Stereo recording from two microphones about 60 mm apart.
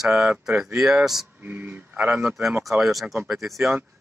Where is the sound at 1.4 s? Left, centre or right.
Right.